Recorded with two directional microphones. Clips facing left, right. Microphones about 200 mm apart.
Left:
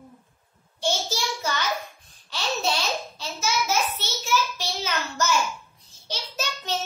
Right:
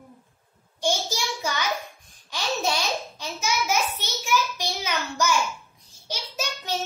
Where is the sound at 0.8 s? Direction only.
15° right (ahead or behind).